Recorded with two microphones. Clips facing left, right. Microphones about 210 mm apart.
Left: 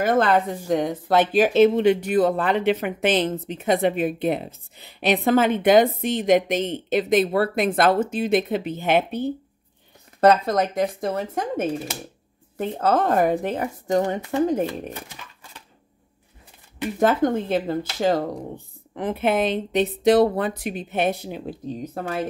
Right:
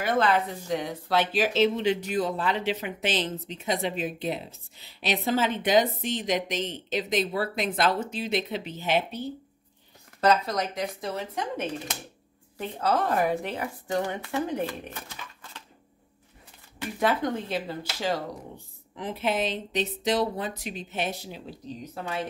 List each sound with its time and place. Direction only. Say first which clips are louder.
0.0 s speech: left 5 dB; 50° left (ahead or behind)
14.7 s speech: left 6 dB; 15° left (ahead or behind)
17.0 s speech: left 6 dB; 50° left (ahead or behind)